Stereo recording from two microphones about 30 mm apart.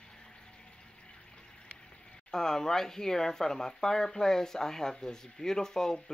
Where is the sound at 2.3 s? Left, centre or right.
Centre.